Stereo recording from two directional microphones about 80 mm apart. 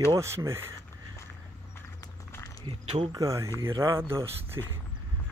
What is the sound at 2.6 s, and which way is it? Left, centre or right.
Speech, right.